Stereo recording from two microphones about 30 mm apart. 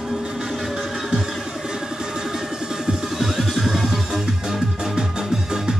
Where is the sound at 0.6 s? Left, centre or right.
Centre.